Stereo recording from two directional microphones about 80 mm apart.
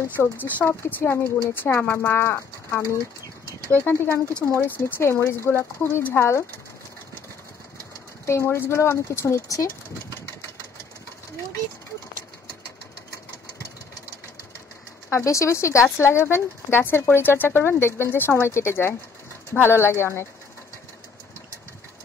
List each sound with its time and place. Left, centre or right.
0.1 s speech: left
8.3 s speech: left
15.0 s speech: left